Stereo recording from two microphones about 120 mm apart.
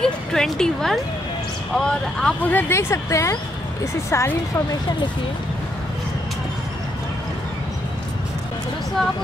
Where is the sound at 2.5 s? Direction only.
20° left (ahead or behind).